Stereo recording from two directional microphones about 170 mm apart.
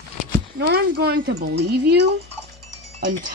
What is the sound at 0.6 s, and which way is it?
Speech, 65° right (ahead or behind).